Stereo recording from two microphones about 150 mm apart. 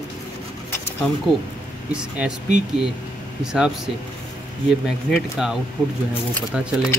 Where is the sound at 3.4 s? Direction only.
5° right (ahead or behind).